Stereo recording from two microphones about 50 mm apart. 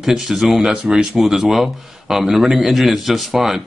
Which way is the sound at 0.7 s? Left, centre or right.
Centre.